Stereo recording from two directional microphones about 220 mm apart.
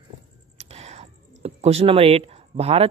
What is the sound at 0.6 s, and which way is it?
Speech, 30° right (ahead or behind).